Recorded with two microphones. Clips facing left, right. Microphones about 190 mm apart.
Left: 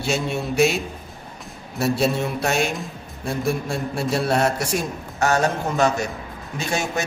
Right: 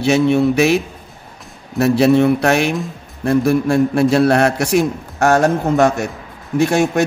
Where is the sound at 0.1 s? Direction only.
65° right (ahead or behind).